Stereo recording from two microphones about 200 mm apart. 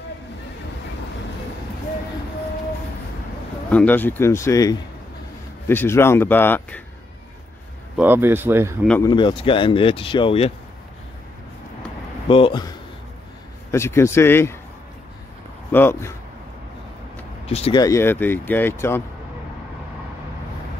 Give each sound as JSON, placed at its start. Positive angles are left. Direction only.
{"t": 3.7, "sound": "speech", "side_deg": 10}
{"t": 7.9, "sound": "speech", "side_deg": -10}
{"t": 9.0, "sound": "speech", "side_deg": 25}
{"t": 12.3, "sound": "speech", "side_deg": 25}
{"t": 13.7, "sound": "speech", "side_deg": 15}
{"t": 15.7, "sound": "speech", "side_deg": 10}
{"t": 17.5, "sound": "speech", "side_deg": 30}
{"t": 17.8, "sound": "speech", "side_deg": 15}